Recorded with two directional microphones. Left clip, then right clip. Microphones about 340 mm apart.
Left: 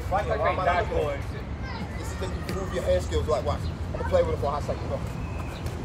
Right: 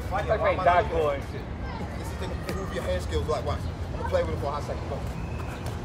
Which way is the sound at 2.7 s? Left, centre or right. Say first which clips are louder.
Left 6 dB; centre.